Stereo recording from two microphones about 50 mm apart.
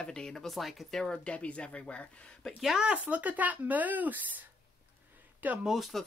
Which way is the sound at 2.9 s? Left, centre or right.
Right.